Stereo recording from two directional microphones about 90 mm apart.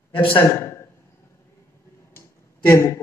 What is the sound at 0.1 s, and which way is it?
Speech, 75° left (ahead or behind).